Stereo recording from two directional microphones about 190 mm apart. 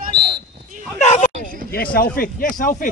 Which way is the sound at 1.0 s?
40° left (ahead or behind).